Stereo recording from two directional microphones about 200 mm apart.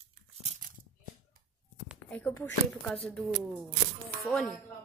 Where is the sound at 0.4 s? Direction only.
40° right (ahead or behind).